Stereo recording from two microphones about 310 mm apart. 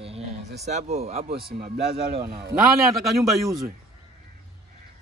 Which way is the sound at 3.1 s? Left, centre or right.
Centre.